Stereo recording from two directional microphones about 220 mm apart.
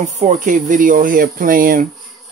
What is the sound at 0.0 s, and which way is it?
Speech, 35° right (ahead or behind).